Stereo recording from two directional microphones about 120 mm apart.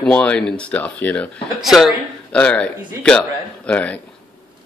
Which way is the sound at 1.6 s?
Centre (ahead or behind).